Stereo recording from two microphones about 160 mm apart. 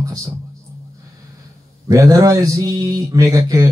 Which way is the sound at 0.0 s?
20° right (ahead or behind).